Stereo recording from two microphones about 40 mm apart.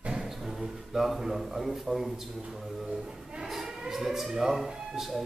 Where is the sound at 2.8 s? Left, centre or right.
Centre.